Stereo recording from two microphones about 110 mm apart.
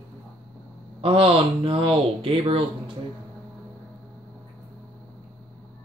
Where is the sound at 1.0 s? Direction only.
55° right (ahead or behind).